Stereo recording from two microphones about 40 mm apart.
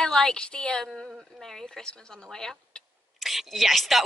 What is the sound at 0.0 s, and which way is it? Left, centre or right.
Speech, centre.